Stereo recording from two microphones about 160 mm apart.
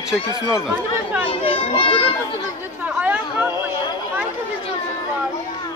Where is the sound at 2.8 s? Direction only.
10° right (ahead or behind).